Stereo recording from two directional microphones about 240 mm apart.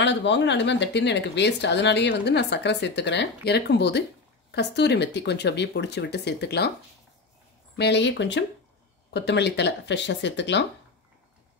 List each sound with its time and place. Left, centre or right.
0.0 s speech: left
7.7 s speech: left